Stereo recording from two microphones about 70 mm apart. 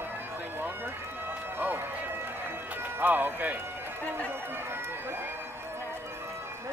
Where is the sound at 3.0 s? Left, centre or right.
Right.